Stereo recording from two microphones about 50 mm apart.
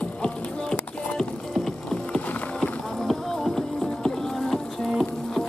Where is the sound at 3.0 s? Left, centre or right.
Centre.